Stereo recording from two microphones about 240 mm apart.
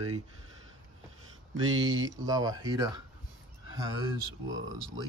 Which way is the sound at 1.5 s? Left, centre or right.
Right.